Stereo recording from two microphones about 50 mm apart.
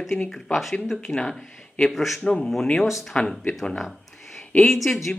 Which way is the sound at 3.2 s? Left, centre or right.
Left.